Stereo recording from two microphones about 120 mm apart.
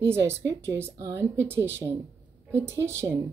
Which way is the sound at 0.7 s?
20° right (ahead or behind).